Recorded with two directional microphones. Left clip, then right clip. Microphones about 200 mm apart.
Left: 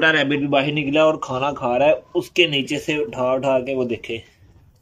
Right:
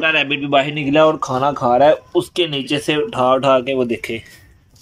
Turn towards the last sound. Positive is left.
turn(degrees=10)  # may be behind; listen again after turning